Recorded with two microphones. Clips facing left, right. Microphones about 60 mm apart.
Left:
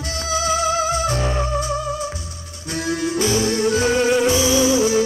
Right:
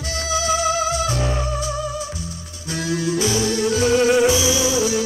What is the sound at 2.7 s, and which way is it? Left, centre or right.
Music, left.